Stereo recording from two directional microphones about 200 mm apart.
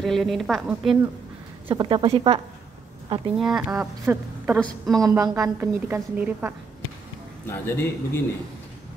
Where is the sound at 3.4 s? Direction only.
5° right (ahead or behind).